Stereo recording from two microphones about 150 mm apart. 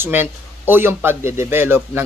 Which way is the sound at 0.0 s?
15° right (ahead or behind).